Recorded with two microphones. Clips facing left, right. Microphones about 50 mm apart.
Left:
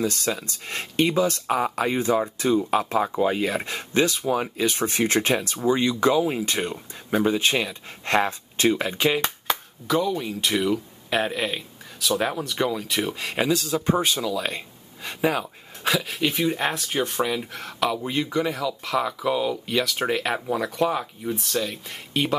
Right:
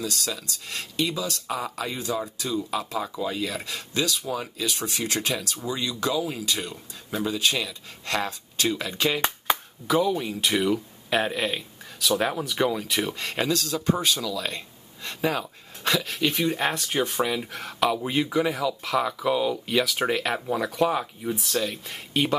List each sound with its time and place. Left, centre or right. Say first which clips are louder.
0.0 s speech: left 5 dB; left; by 9.2 s centre
9.5 s clapping: right 2 dB; centre
9.8 s speech: even; centre